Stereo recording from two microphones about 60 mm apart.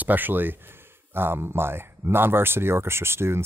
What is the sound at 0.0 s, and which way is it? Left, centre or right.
Speech, right.